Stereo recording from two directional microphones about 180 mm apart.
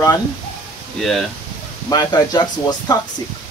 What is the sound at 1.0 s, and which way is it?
Speech, centre (ahead or behind).